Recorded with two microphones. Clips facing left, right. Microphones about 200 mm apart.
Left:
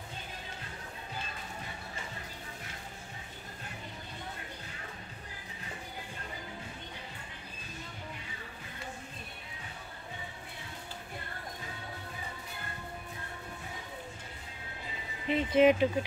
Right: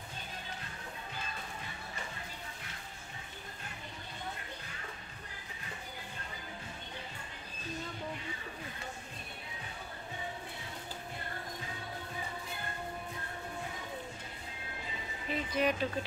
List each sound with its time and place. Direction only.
15.2 s speech: 25° left (ahead or behind)